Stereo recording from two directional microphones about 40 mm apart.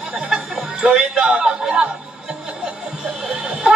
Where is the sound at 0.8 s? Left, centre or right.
Right.